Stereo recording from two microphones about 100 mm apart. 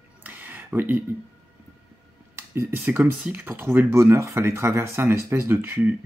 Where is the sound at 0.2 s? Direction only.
15° right (ahead or behind).